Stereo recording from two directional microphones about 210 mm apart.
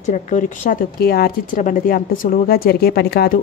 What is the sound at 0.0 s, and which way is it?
Speech, 35° left (ahead or behind).